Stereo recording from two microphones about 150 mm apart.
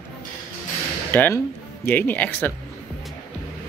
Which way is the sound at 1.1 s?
10° left (ahead or behind).